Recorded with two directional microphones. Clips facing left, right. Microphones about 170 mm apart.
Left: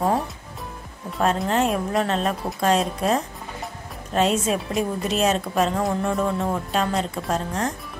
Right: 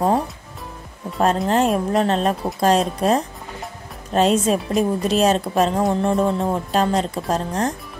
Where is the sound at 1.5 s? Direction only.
35° right (ahead or behind).